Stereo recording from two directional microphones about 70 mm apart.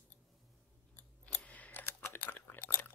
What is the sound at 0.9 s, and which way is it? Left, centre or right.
Scissors, left.